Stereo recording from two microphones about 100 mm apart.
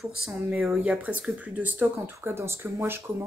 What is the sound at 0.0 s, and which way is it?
A woman's voice, 5° right (ahead or behind).